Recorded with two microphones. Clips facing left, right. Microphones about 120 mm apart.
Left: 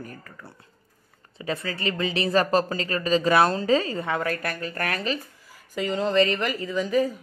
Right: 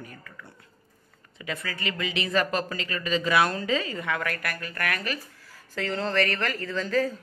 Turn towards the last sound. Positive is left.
turn(degrees=15)  # may be behind; listen again after turning